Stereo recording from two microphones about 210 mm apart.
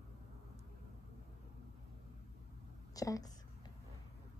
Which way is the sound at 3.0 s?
15° left (ahead or behind).